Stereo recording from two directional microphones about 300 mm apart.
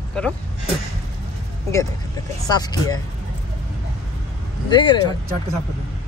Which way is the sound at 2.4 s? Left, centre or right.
Centre.